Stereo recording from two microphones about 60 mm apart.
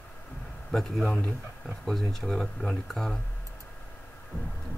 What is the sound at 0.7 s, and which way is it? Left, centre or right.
A man's voice, centre.